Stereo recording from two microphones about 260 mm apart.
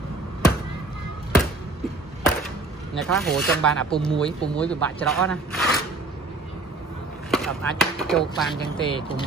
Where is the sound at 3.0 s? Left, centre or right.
Centre.